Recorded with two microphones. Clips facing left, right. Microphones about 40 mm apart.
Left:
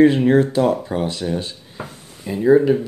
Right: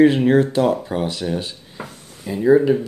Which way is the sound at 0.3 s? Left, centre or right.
Centre.